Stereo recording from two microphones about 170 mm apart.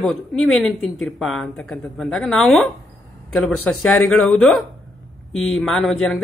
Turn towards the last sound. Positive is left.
turn(degrees=5)  # may be behind; listen again after turning